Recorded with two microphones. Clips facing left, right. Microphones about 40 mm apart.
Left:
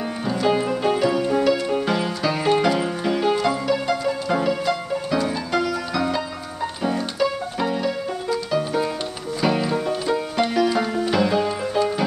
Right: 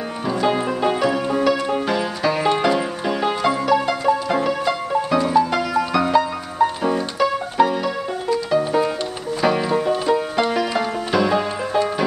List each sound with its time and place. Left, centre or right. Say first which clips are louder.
0.3 s music: right 1 dB; centre
7.8 s music: right 1 dB; centre